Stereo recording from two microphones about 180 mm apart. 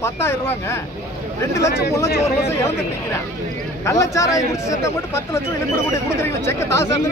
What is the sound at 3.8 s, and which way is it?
Speech, 15° left (ahead or behind).